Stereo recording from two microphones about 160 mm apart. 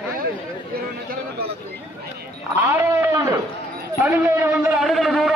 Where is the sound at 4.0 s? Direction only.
10° right (ahead or behind).